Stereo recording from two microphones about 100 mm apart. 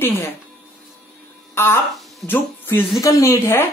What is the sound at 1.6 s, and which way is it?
Speech, 25° left (ahead or behind).